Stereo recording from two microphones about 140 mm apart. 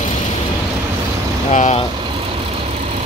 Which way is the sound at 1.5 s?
55° left (ahead or behind).